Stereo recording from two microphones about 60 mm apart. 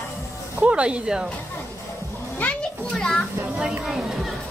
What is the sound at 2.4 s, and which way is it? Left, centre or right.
Children playing, centre.